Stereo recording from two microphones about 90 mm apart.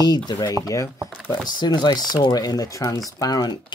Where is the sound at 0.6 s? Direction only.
35° left (ahead or behind).